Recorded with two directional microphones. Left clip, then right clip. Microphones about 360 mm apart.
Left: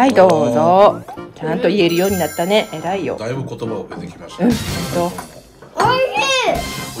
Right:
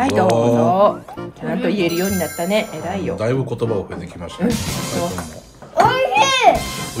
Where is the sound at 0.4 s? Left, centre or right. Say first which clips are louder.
Left 1 dB; centre.